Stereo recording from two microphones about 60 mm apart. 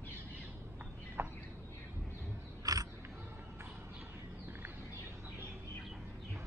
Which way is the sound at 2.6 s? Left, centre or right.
Right.